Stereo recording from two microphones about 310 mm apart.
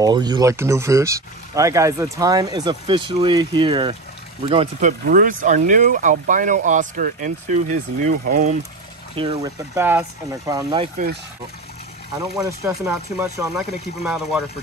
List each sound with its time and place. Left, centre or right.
0.0 s speech: centre
12.2 s speech: centre